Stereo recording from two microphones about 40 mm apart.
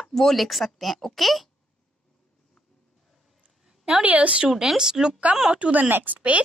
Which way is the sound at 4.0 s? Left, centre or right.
Right.